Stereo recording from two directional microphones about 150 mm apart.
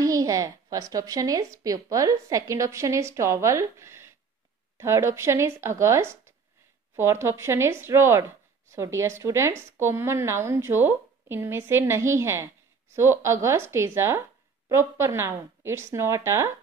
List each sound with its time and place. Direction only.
0.0 s a woman's voice: 20° right (ahead or behind)